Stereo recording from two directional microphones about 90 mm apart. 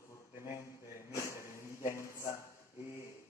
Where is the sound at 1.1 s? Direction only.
35° left (ahead or behind).